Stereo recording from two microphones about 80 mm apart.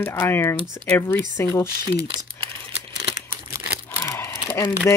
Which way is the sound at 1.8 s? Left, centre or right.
Right.